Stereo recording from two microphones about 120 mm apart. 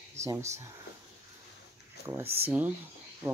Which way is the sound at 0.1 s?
25° right (ahead or behind).